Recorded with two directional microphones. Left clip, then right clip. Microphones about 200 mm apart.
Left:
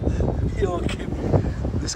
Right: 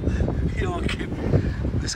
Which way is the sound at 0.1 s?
30° left (ahead or behind).